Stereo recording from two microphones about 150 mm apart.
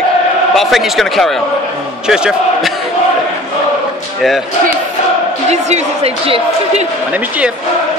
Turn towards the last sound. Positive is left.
turn(degrees=-40)  # may be behind; listen again after turning